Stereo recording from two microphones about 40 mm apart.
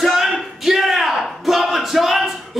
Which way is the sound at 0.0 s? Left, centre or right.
Centre.